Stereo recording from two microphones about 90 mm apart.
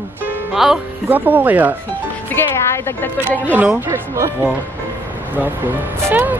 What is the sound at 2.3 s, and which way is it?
Speech, 25° left (ahead or behind).